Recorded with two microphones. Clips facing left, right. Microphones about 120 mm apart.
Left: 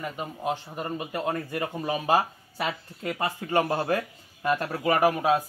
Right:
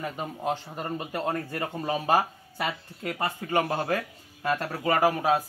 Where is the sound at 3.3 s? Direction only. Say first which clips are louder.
Left 1 dB; 15° left (ahead or behind).